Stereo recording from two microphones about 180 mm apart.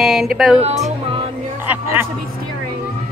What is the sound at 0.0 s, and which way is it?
Speech, centre (ahead or behind).